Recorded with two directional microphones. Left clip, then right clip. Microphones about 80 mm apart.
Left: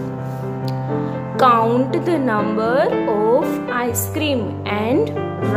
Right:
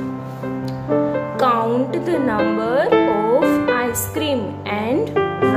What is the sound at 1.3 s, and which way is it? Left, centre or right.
Speech, left.